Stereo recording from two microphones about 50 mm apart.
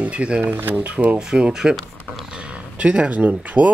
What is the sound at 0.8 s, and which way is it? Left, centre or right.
Speech, right.